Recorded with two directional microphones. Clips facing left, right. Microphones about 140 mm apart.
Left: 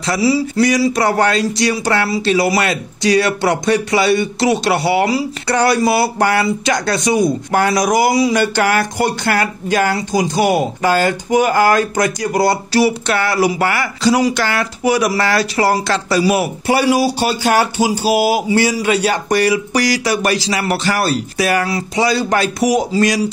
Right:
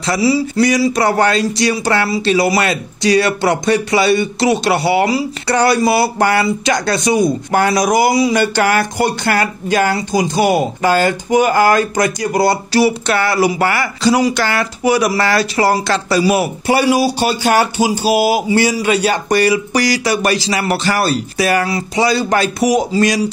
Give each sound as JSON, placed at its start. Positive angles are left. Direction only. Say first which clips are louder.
{"t": 0.0, "sound": "speech", "louder": "right 1 dB", "side_deg": -25}